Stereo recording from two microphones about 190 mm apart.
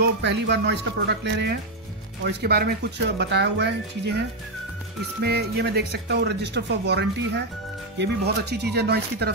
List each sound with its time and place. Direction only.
0.0 s speech: 65° right (ahead or behind)
5.2 s speech: 60° right (ahead or behind)